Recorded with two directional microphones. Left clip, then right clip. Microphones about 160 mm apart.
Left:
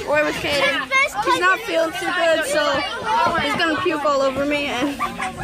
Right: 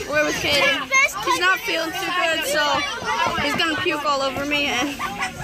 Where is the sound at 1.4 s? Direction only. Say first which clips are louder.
Left 2 dB; 15° left (ahead or behind).